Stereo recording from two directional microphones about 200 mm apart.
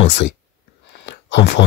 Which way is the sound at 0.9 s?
60° left (ahead or behind).